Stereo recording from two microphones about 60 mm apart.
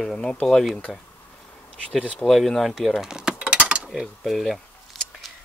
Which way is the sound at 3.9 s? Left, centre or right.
Centre.